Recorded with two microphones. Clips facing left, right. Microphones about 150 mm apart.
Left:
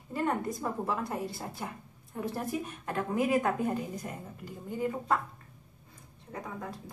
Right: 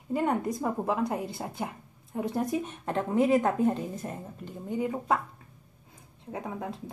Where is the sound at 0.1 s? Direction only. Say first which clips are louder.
Right 4 dB; 20° right (ahead or behind).